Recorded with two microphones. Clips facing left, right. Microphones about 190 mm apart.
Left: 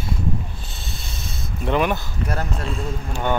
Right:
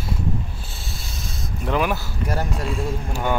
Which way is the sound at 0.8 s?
5° right (ahead or behind).